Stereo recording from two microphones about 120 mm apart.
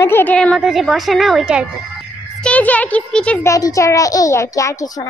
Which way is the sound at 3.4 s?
25° left (ahead or behind).